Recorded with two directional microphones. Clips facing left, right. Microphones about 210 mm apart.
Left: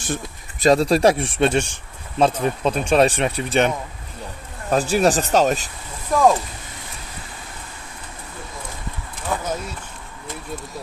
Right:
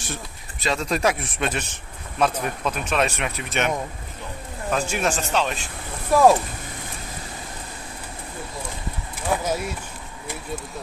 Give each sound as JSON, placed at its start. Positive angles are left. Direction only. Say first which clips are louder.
{"t": 0.1, "sound": "speech", "louder": "left 9 dB", "side_deg": 45}
{"t": 6.1, "sound": "speech", "louder": "right 1 dB", "side_deg": -5}
{"t": 9.3, "sound": "a sound", "louder": "right 1 dB", "side_deg": -10}